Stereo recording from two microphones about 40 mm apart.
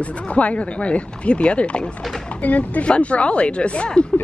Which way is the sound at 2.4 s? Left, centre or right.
Left.